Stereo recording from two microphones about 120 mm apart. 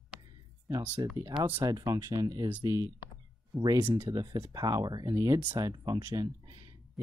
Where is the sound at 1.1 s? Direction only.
35° right (ahead or behind).